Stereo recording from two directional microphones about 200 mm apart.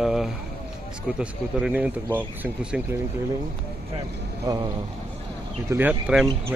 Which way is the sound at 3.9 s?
20° right (ahead or behind).